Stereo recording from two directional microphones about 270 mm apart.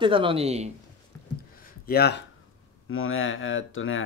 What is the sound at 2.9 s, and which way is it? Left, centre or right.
Speech, left.